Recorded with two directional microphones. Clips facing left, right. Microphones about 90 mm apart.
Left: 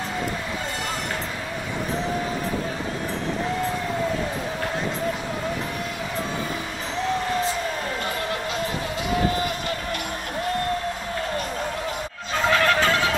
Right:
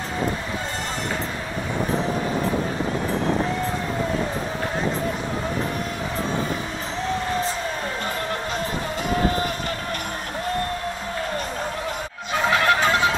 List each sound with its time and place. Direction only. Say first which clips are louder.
12.4 s music: even; 15° right (ahead or behind)